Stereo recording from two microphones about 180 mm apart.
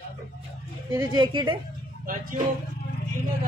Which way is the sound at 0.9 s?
20° right (ahead or behind).